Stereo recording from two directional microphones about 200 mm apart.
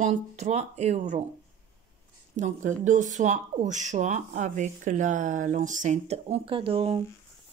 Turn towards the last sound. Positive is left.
turn(degrees=-25)  # may be behind; listen again after turning